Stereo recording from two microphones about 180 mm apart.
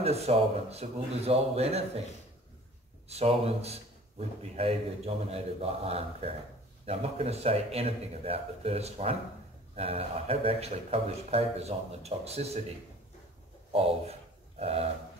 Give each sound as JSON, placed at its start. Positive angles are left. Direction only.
{"t": 0.0, "sound": "a man's voice", "side_deg": -35}
{"t": 3.1, "sound": "a man's voice", "side_deg": -35}
{"t": 13.7, "sound": "a man's voice", "side_deg": -35}